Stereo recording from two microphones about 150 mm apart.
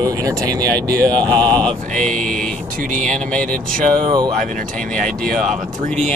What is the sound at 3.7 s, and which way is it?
Speech, 65° right (ahead or behind).